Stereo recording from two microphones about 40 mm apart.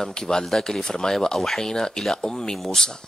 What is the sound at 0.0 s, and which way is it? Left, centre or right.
Speech, centre.